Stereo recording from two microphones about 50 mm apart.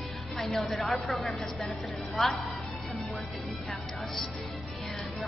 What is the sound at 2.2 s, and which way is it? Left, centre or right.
Music, centre.